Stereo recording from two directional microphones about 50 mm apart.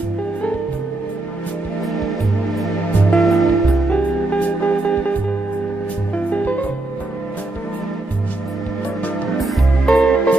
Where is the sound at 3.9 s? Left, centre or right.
Left.